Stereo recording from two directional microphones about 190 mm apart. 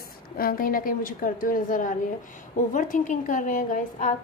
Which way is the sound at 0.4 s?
50° left (ahead or behind).